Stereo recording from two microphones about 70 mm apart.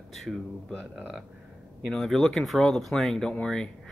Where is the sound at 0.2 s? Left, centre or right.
Centre.